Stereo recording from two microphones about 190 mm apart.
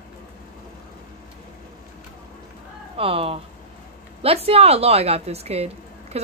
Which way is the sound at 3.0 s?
30° right (ahead or behind).